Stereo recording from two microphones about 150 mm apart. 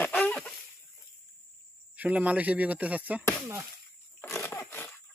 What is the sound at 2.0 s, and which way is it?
Speech, 10° right (ahead or behind).